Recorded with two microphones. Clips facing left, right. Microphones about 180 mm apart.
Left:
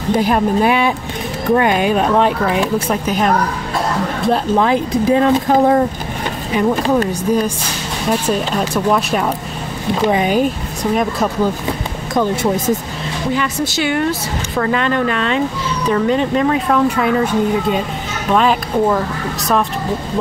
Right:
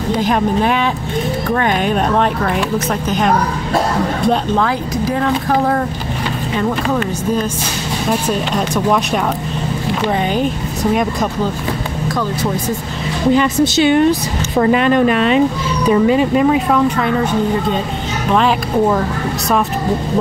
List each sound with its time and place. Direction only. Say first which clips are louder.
0.2 s speech: even; 10° left (ahead or behind)
4.9 s speech: left 6 dB; 20° left (ahead or behind)
8.1 s speech: left 1 dB; centre (ahead or behind)
13.4 s a woman's voice: right 6 dB; 20° right (ahead or behind); by 16.8 s 5° right (ahead or behind)
18.3 s speech: even; centre (ahead or behind)